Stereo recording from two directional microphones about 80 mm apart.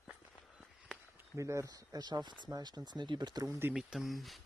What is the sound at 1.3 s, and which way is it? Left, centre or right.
Speech, right.